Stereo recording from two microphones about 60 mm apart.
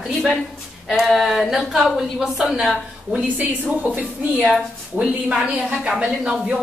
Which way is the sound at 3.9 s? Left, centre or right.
Right.